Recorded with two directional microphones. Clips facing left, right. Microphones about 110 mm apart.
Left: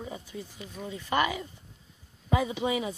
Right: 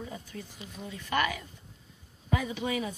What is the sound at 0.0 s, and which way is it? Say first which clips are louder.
A woman's voice: left 2 dB; 15° left (ahead or behind).